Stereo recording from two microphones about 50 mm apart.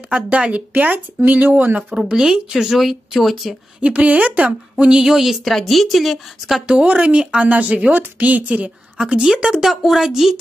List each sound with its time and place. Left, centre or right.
0.1 s speech: right
2.1 s speech: centre
3.8 s a woman's voice: right
4.5 s a woman's voice: centre
6.9 s a woman's voice: right
9.0 s a woman's voice: centre